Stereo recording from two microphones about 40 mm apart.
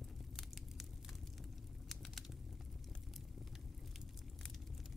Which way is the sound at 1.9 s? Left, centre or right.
Centre.